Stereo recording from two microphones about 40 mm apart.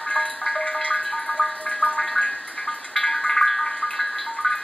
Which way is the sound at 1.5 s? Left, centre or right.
Left.